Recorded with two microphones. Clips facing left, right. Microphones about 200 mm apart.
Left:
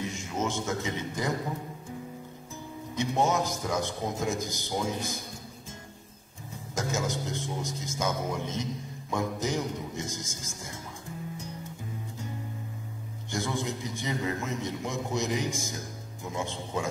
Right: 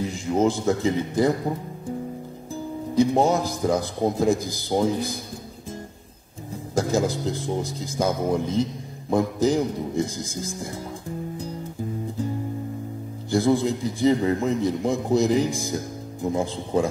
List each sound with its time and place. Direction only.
0.0 s a man's voice: 35° right (ahead or behind)
2.5 s a man's voice: 35° right (ahead or behind)
6.7 s a man's voice: 35° right (ahead or behind)
13.3 s a man's voice: 35° right (ahead or behind)